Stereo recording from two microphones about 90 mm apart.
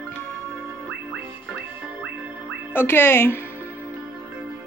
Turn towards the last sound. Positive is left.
turn(degrees=25)  # may be behind; listen again after turning